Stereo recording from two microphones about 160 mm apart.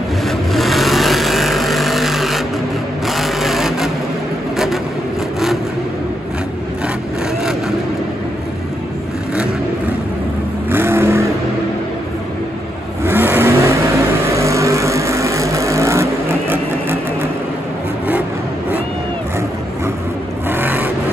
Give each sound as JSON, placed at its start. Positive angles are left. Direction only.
{"t": 0.3, "sound": "vehicle", "side_deg": 0}
{"t": 3.1, "sound": "sewing machine", "side_deg": 0}
{"t": 10.7, "sound": "vehicle", "side_deg": -15}
{"t": 13.0, "sound": "vehicle", "side_deg": -15}
{"t": 20.4, "sound": "vehicle", "side_deg": -10}